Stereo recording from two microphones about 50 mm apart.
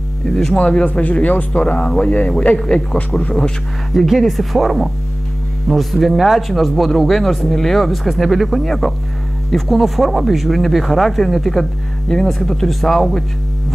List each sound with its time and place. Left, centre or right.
0.3 s speech: centre
0.6 s speech: left
2.6 s speech: centre
3.9 s speech: centre